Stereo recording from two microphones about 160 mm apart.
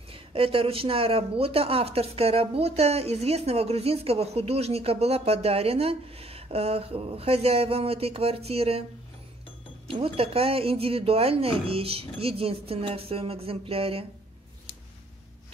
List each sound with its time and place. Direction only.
0.1 s speech: 35° right (ahead or behind)
9.8 s speech: 35° right (ahead or behind)